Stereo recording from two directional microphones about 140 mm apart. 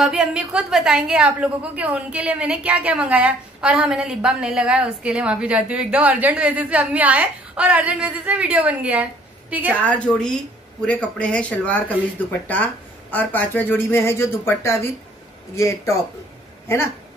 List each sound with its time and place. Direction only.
0.0 s a woman's voice: 5° right (ahead or behind)
9.8 s speech: 10° left (ahead or behind)